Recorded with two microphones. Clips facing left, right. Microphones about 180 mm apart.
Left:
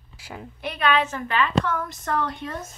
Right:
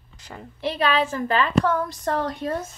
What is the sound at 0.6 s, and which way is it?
A woman's voice, 30° right (ahead or behind).